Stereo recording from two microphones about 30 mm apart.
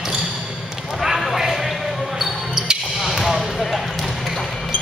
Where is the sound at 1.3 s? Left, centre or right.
Centre.